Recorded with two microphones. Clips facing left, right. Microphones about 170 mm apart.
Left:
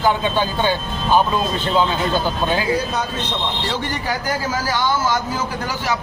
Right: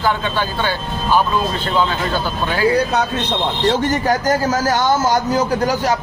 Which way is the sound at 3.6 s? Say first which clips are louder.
Right 8 dB; 45° right (ahead or behind).